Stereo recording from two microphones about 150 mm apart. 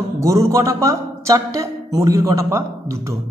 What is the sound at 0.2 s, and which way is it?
A man's voice, 20° right (ahead or behind).